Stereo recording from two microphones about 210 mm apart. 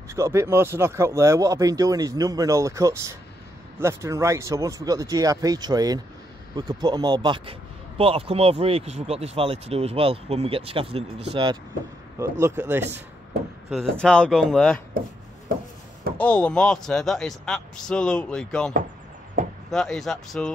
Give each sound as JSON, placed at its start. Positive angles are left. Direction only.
{"t": 0.1, "sound": "speech", "side_deg": -15}
{"t": 12.2, "sound": "speech", "side_deg": -15}
{"t": 13.7, "sound": "speech", "side_deg": 0}
{"t": 16.2, "sound": "speech", "side_deg": 5}
{"t": 19.4, "sound": "speech", "side_deg": -40}
{"t": 19.7, "sound": "speech", "side_deg": 0}